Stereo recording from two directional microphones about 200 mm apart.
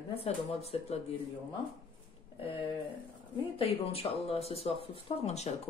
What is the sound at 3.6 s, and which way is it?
Speech, 30° left (ahead or behind).